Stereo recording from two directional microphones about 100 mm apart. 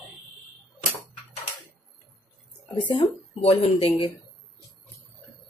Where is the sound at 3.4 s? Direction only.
80° left.